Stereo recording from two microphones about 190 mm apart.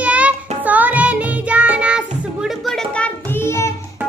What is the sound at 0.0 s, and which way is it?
Music, 5° right (ahead or behind).